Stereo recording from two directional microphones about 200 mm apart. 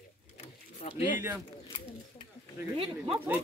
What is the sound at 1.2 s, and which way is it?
Speech, 10° right (ahead or behind).